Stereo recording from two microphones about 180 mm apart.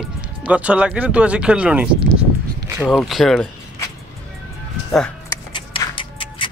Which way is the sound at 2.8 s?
Centre (ahead or behind).